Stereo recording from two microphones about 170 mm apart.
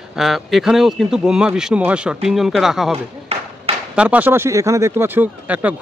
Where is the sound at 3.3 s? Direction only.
35° right (ahead or behind).